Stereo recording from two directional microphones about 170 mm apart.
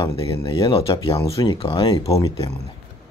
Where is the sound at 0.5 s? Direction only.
20° left (ahead or behind).